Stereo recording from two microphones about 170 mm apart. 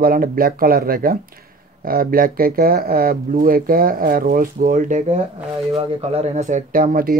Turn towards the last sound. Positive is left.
turn(degrees=-55)  # may be behind; listen again after turning